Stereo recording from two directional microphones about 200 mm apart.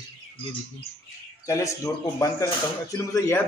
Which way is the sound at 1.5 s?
15° left (ahead or behind).